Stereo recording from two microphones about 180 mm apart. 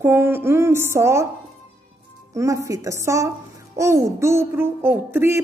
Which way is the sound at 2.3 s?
15° right (ahead or behind).